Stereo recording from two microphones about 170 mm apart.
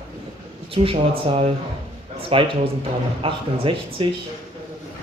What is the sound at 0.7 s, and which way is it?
A man's voice, 35° right (ahead or behind).